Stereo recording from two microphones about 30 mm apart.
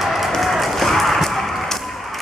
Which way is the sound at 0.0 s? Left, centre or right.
Centre.